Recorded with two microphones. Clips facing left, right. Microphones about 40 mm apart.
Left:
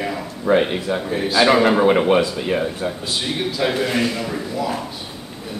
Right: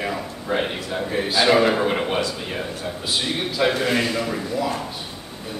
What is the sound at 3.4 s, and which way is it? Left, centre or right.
A man's voice, centre.